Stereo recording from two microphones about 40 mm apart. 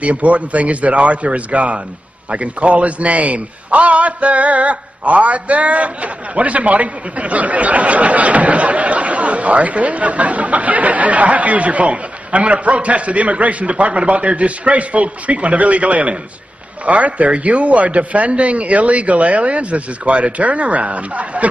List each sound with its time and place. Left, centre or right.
0.0 s a man's voice: right